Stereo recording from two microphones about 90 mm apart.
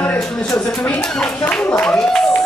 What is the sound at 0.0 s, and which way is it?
Speech, 10° left (ahead or behind).